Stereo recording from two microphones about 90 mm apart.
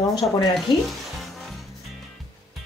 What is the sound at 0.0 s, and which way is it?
Speech, 45° left (ahead or behind).